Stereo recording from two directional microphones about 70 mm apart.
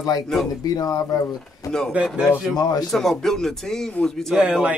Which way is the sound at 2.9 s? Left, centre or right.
Centre.